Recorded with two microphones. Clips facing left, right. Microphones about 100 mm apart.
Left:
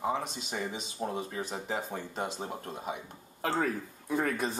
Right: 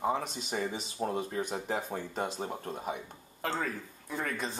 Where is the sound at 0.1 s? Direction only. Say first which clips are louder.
Right 1 dB; centre (ahead or behind).